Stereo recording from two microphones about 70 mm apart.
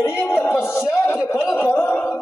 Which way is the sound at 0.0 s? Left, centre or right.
Left.